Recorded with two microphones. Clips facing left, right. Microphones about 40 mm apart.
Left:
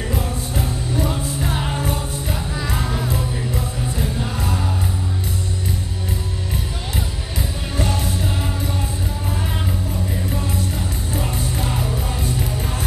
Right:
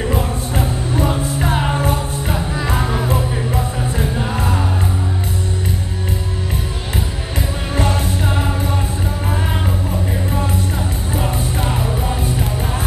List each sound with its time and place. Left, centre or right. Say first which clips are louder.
0.1 s music: right 4 dB; right
7.7 s music: right 4 dB; right
11.1 s music: right 4 dB; right